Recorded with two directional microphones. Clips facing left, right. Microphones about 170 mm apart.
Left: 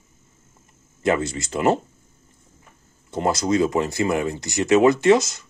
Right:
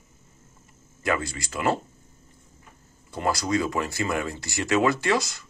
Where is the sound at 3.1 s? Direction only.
20° left (ahead or behind).